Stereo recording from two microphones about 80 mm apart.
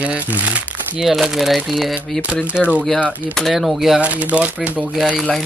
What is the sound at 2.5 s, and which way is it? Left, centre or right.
Speech, centre.